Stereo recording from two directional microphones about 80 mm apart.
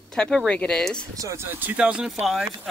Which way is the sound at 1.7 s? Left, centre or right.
Centre.